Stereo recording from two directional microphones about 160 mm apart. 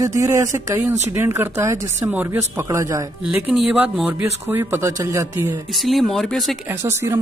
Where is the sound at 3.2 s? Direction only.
5° right (ahead or behind).